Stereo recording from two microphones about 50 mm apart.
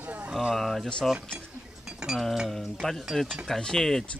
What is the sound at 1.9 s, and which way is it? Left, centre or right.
Chink, centre.